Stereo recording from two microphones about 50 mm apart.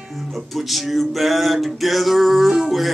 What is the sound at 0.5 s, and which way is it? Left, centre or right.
Music, centre.